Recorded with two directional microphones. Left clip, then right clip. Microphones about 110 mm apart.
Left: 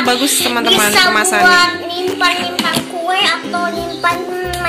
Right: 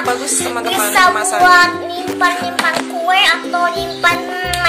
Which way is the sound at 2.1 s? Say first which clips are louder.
Even; 30° right (ahead or behind).